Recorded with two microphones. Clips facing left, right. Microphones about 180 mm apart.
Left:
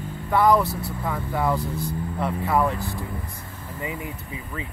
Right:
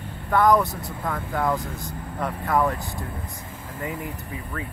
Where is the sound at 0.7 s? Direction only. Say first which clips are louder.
Left 3 dB; 20° right (ahead or behind).